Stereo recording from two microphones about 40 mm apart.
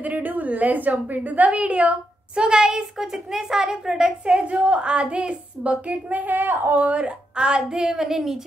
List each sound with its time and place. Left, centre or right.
0.0 s a woman's voice: right; by 4.4 s centre
4.4 s a woman's voice: right
6.7 s speech: right; by 8.4 s centre